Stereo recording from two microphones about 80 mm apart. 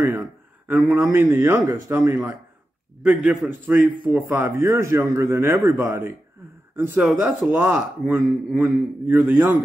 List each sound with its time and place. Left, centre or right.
0.0 s a man's voice: right
3.0 s a man's voice: centre
3.4 s a man's voice: right
6.8 s speech: right